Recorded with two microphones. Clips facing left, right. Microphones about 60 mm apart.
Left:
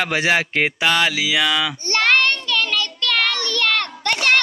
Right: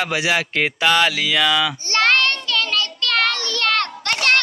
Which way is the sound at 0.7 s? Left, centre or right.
Centre.